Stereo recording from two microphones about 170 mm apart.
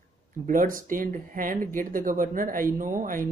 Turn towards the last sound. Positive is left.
turn(degrees=-50)  # may be behind; listen again after turning